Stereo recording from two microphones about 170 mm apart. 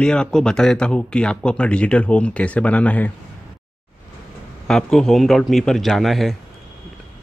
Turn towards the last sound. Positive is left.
turn(degrees=0)  # may be behind; listen again after turning